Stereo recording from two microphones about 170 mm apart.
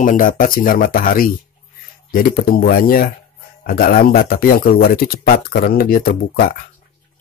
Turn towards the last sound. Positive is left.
turn(degrees=60)  # may be behind; listen again after turning